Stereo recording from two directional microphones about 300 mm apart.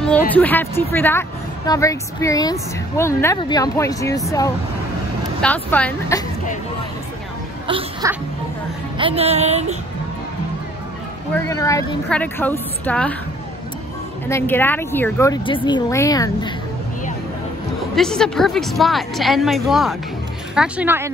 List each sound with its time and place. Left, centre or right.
0.3 s a woman's voice: centre
5.4 s a woman's voice: centre
7.6 s a sound: centre
8.9 s speech: centre
11.3 s a woman's voice: centre
14.2 s a woman's voice: centre
17.9 s a woman's voice: centre